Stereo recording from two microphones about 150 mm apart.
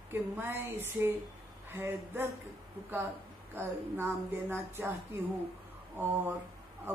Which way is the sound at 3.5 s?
15° right (ahead or behind).